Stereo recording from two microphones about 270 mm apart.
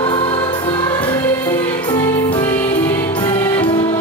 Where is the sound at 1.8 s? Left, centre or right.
Centre.